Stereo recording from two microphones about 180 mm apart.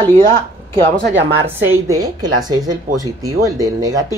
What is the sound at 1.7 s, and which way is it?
Speech, 20° right (ahead or behind).